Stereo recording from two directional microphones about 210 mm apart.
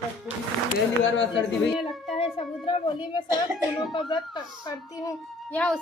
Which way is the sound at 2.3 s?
25° left (ahead or behind).